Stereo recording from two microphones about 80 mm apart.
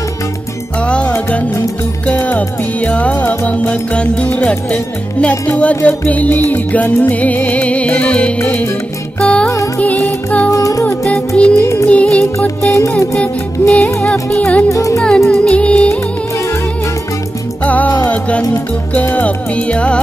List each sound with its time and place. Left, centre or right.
0.7 s music: centre
10.5 s music: left
11.1 s music: centre
14.7 s music: left
15.0 s music: centre
17.6 s music: centre